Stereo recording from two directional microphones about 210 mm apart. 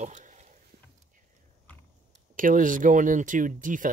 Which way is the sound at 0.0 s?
35° right (ahead or behind).